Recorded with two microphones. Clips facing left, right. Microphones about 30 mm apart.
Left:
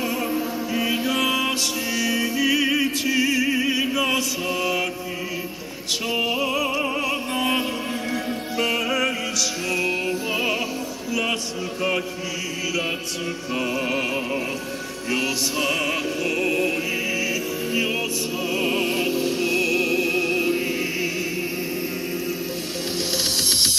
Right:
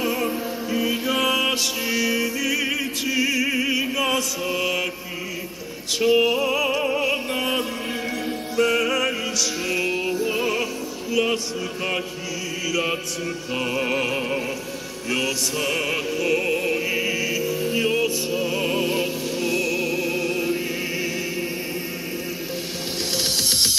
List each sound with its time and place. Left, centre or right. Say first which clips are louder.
0.0 s music: even; centre
2.3 s music: left 3 dB; centre
5.9 s opera: right 5 dB; centre
7.0 s music: right 1 dB; centre
8.5 s music: right 2 dB; centre
10.2 s music: right 1 dB; centre
12.6 s chant: right 2 dB; centre
13.7 s music: right 2 dB; centre
15.0 s music: even; centre
15.7 s music: even; centre
23.2 s music: even; centre